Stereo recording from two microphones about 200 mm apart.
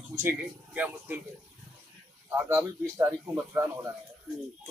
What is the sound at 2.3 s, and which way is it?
A man's voice, 15° right (ahead or behind).